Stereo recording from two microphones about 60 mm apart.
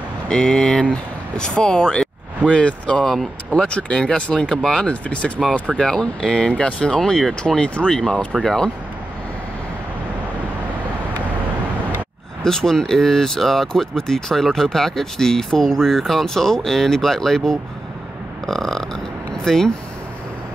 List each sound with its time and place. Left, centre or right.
0.3 s speech: centre
8.4 s speech: centre
12.4 s speech: centre